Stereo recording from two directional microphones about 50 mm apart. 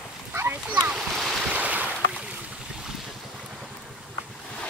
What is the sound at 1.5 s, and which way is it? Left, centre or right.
Boat, right.